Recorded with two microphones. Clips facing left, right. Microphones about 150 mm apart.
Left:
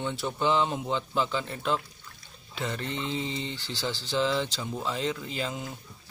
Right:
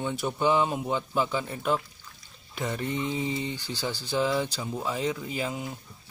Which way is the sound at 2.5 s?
15° right (ahead or behind).